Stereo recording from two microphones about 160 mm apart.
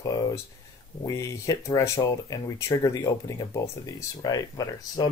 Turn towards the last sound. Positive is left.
turn(degrees=20)  # may be behind; listen again after turning